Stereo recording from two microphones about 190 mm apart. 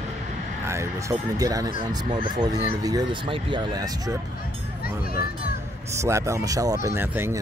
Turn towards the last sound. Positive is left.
turn(degrees=-15)  # may be behind; listen again after turning